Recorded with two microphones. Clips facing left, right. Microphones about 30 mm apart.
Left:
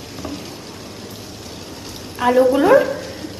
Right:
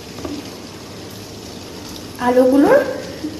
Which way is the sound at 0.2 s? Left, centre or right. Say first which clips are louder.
Right 2 dB; centre.